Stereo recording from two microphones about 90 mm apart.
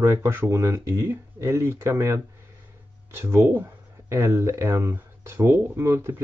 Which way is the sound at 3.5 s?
25° right (ahead or behind).